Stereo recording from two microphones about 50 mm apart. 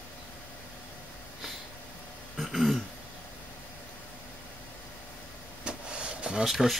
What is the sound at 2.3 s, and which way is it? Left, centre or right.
Throat clearing, centre.